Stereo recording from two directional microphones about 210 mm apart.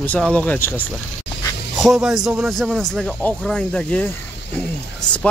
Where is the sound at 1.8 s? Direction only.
Centre (ahead or behind).